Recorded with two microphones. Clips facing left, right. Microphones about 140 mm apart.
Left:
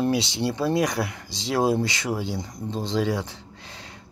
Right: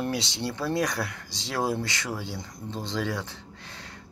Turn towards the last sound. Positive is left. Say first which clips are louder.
# left 1 dB
turn(degrees=15)  # may be behind; listen again after turning